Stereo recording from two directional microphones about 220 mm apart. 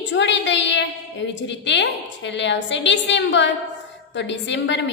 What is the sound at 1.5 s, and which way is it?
A woman's voice, 55° left (ahead or behind).